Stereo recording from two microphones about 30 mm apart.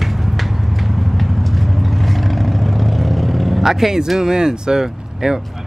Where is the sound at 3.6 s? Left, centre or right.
Centre.